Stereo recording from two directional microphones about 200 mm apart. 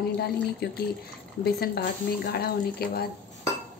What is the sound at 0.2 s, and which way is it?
Speech, 55° left (ahead or behind).